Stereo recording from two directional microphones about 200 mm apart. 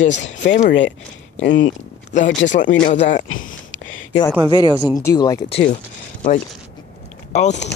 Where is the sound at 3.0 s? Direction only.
65° left (ahead or behind).